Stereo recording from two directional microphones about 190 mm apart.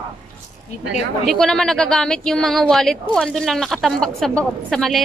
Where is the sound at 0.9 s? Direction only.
Centre (ahead or behind).